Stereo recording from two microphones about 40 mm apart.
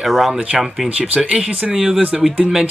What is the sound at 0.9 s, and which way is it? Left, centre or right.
Speech, right.